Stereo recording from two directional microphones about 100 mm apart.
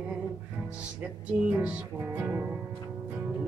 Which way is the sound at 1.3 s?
15° right (ahead or behind).